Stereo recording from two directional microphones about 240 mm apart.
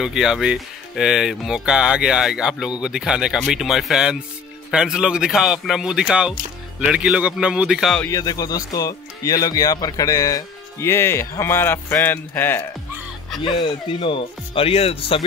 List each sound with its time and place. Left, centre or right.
0.0 s speech: centre
8.1 s speech: centre
13.4 s speech: left